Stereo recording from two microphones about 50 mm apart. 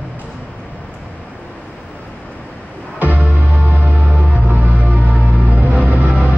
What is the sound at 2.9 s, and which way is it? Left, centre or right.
Music, right.